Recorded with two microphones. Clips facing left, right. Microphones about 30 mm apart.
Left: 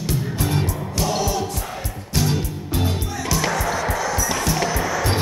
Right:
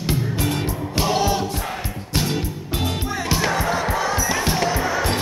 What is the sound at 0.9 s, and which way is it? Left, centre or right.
Music, right.